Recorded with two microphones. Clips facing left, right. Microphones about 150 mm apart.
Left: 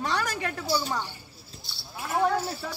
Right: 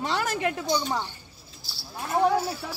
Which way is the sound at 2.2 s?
10° right (ahead or behind).